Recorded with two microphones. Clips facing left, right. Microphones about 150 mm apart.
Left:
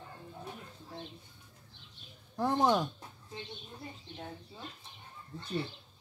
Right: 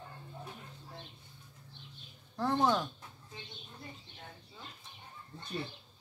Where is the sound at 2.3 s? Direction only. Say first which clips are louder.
Left 2 dB; 15° left (ahead or behind).